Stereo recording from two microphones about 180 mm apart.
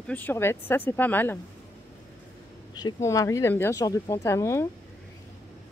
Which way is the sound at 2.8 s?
20° left (ahead or behind).